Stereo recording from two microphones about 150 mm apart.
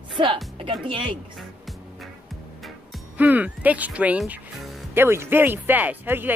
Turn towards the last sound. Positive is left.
turn(degrees=-15)  # may be behind; listen again after turning